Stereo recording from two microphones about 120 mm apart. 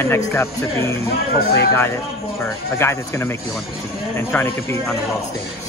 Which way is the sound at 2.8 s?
20° left (ahead or behind).